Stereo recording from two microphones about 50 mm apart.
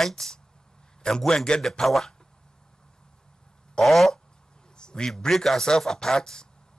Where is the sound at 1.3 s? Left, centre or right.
Centre.